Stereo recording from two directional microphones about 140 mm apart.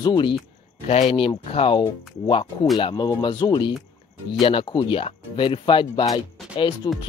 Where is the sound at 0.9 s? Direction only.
50° left (ahead or behind).